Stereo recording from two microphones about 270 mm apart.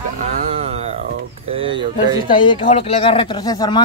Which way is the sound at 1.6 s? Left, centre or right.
Centre.